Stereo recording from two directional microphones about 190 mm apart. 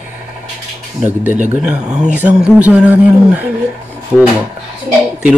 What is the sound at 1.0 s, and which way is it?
Speech, 10° right (ahead or behind).